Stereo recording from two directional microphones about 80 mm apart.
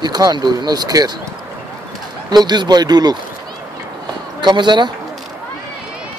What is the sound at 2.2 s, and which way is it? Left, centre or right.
Speech, right.